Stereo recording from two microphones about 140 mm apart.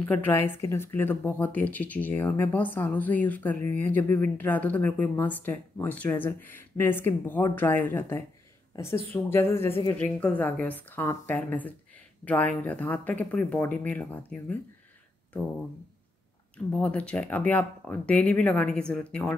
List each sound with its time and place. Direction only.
0.0 s speech: 15° left (ahead or behind)
8.7 s a woman's voice: 25° left (ahead or behind)
16.5 s speech: 10° left (ahead or behind)